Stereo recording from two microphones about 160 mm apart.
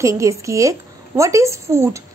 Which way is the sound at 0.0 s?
20° right (ahead or behind).